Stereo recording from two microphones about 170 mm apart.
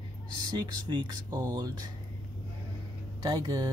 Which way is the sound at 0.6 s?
25° right (ahead or behind).